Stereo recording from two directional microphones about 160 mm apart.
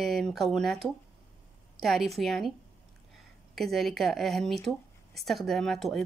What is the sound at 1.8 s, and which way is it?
Speech, centre (ahead or behind).